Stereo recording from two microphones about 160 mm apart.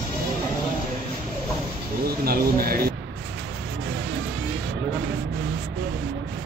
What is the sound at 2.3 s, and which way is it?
Speech, 70° right (ahead or behind).